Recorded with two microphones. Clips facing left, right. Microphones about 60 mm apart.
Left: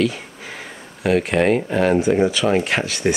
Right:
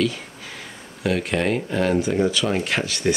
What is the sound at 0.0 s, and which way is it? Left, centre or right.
Speech, left.